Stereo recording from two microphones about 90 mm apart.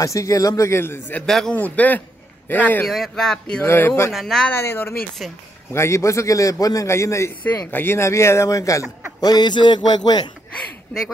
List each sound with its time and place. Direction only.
0.0 s a man's voice: 35° left (ahead or behind)
1.2 s speech: 5° left (ahead or behind)
1.5 s speech: 15° left (ahead or behind)
2.9 s speech: 5° left (ahead or behind)
3.6 s speech: 25° left (ahead or behind)
4.1 s speech: centre (ahead or behind)
4.5 s speech: 25° left (ahead or behind)
5.2 s speech: centre (ahead or behind)
5.7 s a man's voice: 30° left (ahead or behind)
9.2 s a man's voice: 50° left (ahead or behind)